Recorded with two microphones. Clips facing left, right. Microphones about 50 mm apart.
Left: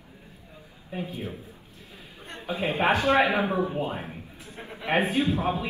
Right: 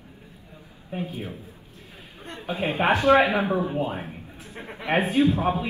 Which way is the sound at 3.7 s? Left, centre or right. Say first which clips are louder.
Right 2 dB; right.